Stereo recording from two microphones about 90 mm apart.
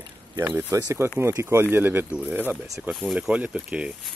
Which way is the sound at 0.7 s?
35° right (ahead or behind).